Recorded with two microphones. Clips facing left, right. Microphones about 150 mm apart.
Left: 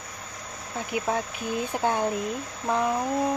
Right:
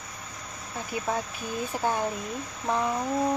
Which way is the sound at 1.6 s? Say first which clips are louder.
Left 2 dB; 20° left (ahead or behind).